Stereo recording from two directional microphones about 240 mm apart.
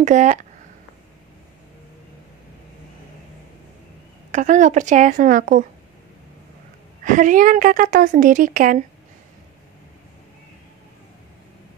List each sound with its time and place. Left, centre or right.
0.0 s a woman's voice: right
4.3 s a woman's voice: right
7.1 s a woman's voice: right